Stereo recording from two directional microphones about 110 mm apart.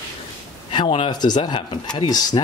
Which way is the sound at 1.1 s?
40° left (ahead or behind).